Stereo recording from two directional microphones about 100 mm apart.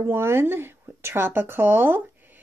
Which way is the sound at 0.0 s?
25° right (ahead or behind).